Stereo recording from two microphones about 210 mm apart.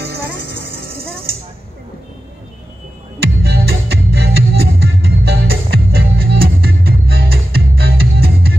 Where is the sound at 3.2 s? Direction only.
50° right (ahead or behind).